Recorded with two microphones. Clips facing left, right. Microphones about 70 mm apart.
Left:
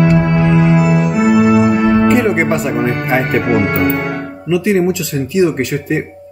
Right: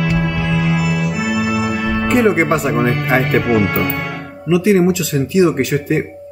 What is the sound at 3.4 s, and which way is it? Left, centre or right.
Speech, left.